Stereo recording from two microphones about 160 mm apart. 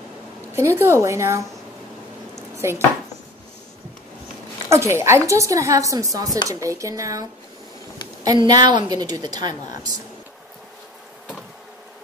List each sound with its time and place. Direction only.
0.5 s a woman's voice: 15° right (ahead or behind)
2.5 s chopping: 15° right (ahead or behind)
4.6 s a woman's voice: 15° right (ahead or behind)